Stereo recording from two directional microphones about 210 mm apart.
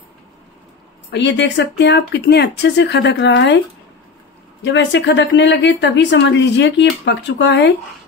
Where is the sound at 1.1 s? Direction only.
55° left (ahead or behind).